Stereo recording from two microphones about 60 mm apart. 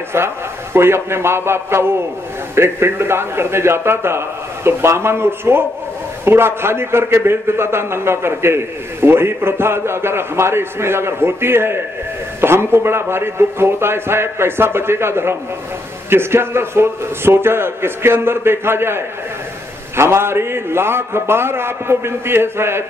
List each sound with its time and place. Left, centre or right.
0.7 s a man's voice: right